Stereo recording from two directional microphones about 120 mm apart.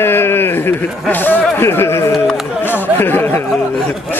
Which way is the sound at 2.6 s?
15° left (ahead or behind).